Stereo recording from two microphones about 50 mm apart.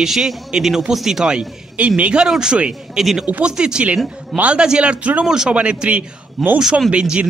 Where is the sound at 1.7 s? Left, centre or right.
Right.